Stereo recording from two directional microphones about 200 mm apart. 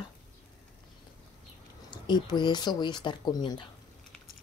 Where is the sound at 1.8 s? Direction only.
20° left (ahead or behind).